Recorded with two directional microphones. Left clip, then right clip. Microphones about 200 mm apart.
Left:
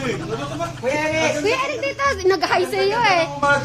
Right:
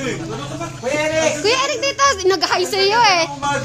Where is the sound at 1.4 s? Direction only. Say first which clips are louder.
Right 3 dB; 20° right (ahead or behind).